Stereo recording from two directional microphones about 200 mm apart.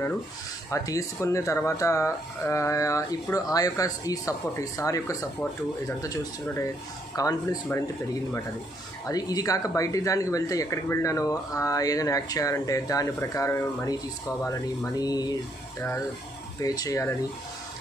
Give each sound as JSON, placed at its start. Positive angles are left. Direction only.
{"t": 0.7, "sound": "speech", "side_deg": 15}
{"t": 9.0, "sound": "speech", "side_deg": 20}
{"t": 16.6, "sound": "speech", "side_deg": 15}